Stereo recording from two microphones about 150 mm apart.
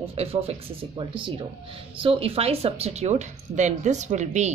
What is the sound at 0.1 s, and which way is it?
Speech, 40° right (ahead or behind).